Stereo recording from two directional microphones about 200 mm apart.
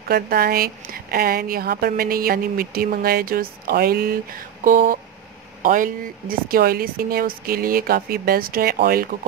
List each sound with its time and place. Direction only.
0.1 s a woman's voice: 50° right (ahead or behind)